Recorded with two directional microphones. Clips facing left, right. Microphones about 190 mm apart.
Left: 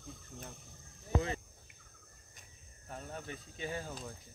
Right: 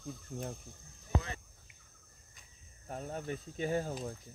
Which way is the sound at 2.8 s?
35° right (ahead or behind).